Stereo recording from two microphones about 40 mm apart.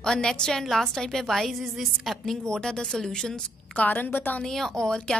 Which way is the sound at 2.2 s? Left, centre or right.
Centre.